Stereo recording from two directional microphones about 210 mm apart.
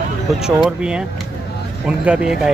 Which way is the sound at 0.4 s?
5° right (ahead or behind).